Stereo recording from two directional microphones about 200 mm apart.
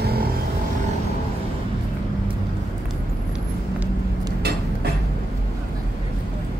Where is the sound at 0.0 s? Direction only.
50° right (ahead or behind).